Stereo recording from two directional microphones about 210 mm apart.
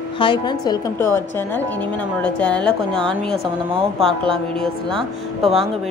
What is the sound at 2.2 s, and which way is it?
A woman's voice, 5° left (ahead or behind).